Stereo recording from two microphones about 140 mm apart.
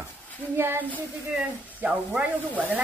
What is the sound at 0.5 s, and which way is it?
Speech, 15° right (ahead or behind).